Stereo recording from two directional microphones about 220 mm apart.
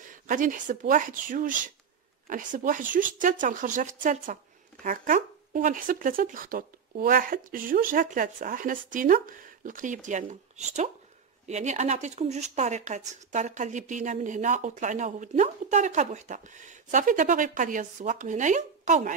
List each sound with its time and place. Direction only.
0.0 s speech: 35° right (ahead or behind)